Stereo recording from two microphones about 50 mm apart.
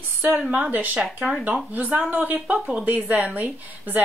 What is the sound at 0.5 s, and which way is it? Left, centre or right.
A woman's voice, right.